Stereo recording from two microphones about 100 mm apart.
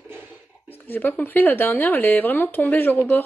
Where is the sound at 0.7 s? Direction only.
20° left (ahead or behind).